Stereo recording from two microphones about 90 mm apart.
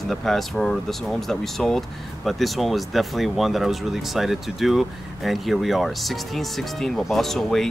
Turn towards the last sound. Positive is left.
turn(degrees=5)  # may be behind; listen again after turning